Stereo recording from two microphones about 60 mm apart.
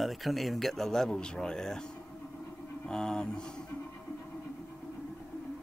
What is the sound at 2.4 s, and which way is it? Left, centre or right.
Vehicle, left.